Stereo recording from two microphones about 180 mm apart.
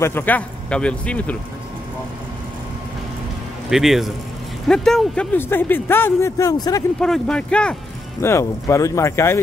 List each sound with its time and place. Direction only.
0.0 s speech: 10° left (ahead or behind)
3.7 s speech: centre (ahead or behind); by 6.8 s 20° left (ahead or behind)
7.0 s speech: 5° left (ahead or behind)